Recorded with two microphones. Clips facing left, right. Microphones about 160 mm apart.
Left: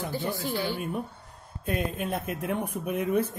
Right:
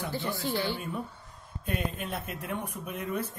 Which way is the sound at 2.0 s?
45° left (ahead or behind).